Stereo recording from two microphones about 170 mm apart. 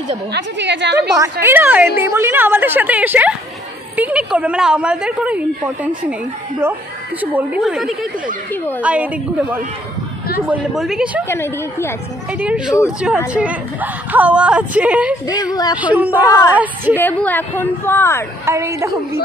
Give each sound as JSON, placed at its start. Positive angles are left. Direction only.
{"t": 0.3, "sound": "a woman's voice", "side_deg": -90}
{"t": 1.1, "sound": "a woman's voice", "side_deg": -15}
{"t": 7.2, "sound": "a woman's voice", "side_deg": -10}
{"t": 11.2, "sound": "a woman's voice", "side_deg": 15}
{"t": 12.4, "sound": "a woman's voice", "side_deg": -5}
{"t": 15.2, "sound": "a woman's voice", "side_deg": 25}
{"t": 15.8, "sound": "a woman's voice", "side_deg": -10}
{"t": 16.3, "sound": "a woman's voice", "side_deg": 20}
{"t": 18.4, "sound": "a woman's voice", "side_deg": -15}